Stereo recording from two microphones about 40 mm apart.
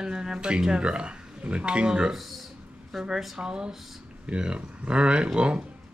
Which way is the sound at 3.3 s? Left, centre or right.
Right.